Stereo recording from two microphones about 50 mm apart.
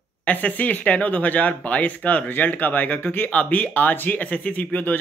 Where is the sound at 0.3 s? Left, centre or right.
Left.